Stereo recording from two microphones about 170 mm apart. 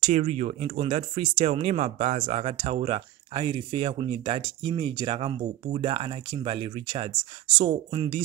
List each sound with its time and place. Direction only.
0.0 s speech: 40° right (ahead or behind)